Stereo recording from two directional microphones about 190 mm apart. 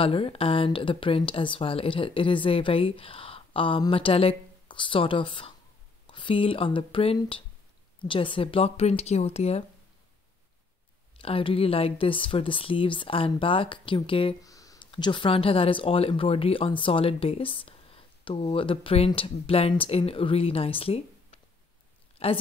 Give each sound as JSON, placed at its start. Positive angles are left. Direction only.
{"t": 0.0, "sound": "speech", "side_deg": 30}
{"t": 11.1, "sound": "a woman's voice", "side_deg": 30}